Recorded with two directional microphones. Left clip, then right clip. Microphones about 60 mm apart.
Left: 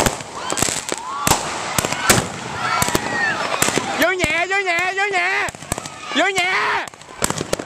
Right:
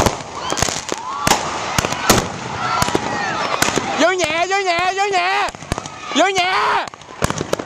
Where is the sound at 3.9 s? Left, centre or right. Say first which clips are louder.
Right 2 dB; right.